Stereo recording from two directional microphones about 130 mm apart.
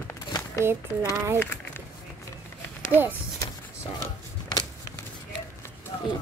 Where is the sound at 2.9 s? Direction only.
15° right (ahead or behind).